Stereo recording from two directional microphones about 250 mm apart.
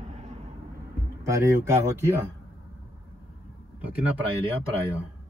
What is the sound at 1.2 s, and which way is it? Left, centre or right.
Speech, centre.